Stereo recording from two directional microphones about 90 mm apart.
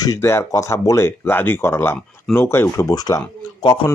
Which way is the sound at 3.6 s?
65° left (ahead or behind).